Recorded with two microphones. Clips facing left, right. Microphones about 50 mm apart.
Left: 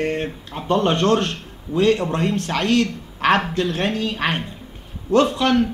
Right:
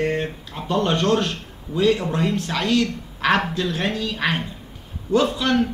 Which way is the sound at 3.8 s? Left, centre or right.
Left.